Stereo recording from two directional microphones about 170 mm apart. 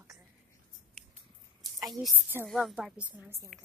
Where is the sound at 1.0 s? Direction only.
5° left (ahead or behind).